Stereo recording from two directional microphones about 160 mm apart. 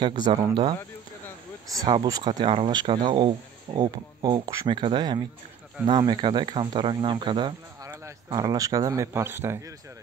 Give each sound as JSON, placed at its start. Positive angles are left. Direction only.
{"t": 0.0, "sound": "speech", "side_deg": -25}